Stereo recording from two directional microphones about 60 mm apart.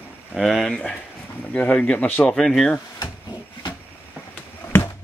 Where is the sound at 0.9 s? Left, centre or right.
Left.